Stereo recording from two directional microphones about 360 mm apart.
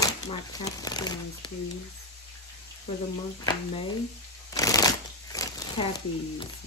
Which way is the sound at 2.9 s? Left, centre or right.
Centre.